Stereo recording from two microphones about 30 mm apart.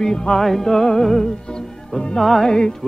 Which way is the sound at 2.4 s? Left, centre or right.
Left.